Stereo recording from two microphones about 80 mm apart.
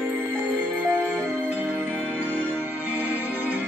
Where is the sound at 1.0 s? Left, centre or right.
Centre.